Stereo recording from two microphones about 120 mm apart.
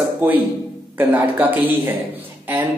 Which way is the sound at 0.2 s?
20° right (ahead or behind).